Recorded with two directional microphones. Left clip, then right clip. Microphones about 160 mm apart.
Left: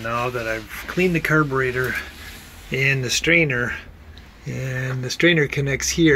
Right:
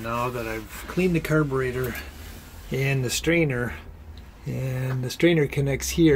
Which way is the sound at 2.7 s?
20° right (ahead or behind).